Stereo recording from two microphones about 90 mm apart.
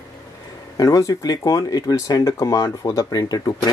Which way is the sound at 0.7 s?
40° left (ahead or behind).